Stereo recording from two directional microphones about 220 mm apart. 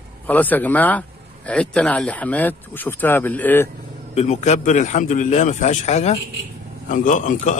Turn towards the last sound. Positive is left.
turn(degrees=35)  # may be behind; listen again after turning